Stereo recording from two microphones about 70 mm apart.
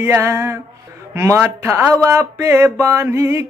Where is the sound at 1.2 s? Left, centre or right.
Right.